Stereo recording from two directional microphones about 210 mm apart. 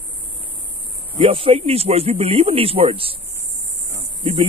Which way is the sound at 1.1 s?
25° right (ahead or behind).